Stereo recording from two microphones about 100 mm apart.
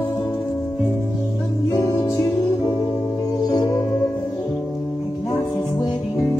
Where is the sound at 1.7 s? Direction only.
35° left (ahead or behind).